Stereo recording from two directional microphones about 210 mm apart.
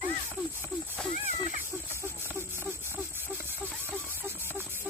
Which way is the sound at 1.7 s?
10° right (ahead or behind).